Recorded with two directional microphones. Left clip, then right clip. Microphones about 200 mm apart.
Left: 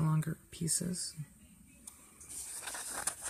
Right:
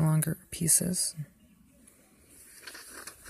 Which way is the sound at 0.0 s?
25° right (ahead or behind).